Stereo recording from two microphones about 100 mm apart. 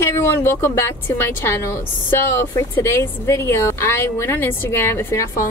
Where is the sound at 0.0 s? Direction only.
25° left (ahead or behind).